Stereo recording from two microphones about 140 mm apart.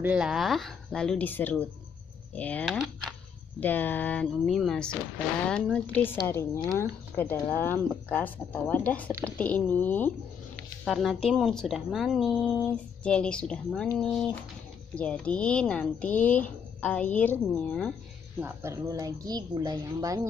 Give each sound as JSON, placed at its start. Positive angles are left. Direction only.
{"t": 0.0, "sound": "speech", "side_deg": -5}
{"t": 10.9, "sound": "speech", "side_deg": 0}
{"t": 15.0, "sound": "speech", "side_deg": 10}
{"t": 18.4, "sound": "a woman's voice", "side_deg": -20}